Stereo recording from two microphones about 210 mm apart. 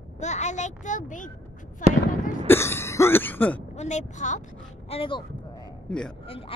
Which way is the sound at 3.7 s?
35° left (ahead or behind).